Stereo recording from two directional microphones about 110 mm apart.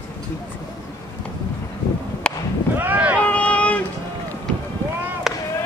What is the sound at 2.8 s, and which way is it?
Boat, 15° right (ahead or behind).